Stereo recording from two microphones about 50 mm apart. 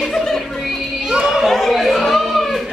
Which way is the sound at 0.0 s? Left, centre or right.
Centre.